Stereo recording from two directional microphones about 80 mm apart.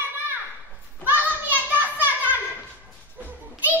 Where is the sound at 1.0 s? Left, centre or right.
Right.